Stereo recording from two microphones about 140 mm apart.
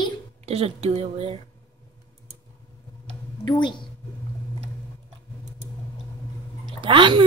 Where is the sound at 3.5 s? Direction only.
35° left (ahead or behind).